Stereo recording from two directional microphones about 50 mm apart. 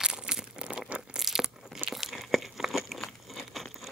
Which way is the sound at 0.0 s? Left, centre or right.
Centre.